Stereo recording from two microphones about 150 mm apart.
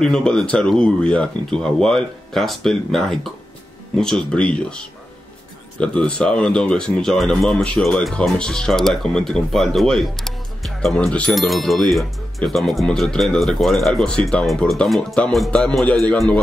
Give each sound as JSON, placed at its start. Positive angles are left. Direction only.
{"t": 0.0, "sound": "speech", "side_deg": 5}